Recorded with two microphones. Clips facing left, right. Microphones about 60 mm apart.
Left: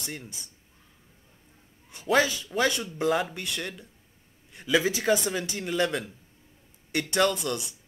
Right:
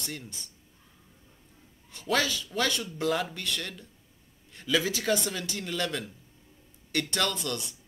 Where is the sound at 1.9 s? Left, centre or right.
Centre.